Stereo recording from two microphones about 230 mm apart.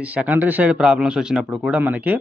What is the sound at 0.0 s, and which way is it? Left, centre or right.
Speech, centre.